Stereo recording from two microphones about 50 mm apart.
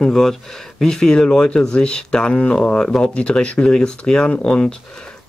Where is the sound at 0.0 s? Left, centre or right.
Centre.